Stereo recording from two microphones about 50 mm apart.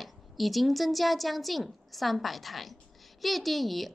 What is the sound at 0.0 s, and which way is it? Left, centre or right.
A woman's voice, centre.